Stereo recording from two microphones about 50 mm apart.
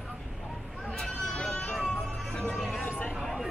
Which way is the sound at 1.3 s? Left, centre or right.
Centre.